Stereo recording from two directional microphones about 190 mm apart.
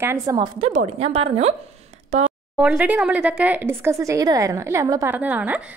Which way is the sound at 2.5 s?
5° right (ahead or behind).